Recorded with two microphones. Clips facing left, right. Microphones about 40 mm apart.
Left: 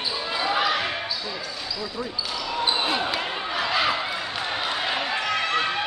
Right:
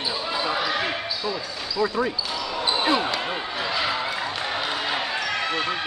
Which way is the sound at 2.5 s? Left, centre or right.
Centre.